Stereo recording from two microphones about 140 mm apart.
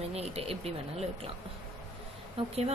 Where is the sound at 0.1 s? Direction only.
45° right (ahead or behind).